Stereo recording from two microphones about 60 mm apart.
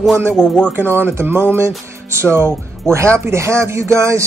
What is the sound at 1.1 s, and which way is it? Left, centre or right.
Speech, right.